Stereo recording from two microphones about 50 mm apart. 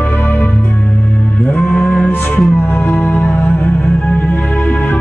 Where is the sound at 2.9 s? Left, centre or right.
Left.